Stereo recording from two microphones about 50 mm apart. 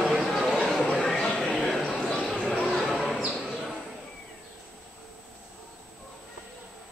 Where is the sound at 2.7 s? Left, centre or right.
Centre.